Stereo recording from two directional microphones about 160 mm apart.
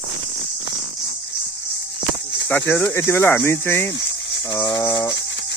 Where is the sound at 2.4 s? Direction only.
15° left (ahead or behind).